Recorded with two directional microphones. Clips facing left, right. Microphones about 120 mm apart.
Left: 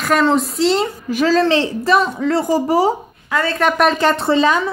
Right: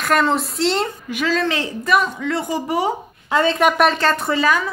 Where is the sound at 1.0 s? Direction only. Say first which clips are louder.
Left 6 dB; 35° left (ahead or behind).